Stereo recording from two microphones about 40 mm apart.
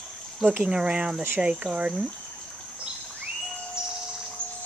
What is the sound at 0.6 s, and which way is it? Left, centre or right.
Speech, right.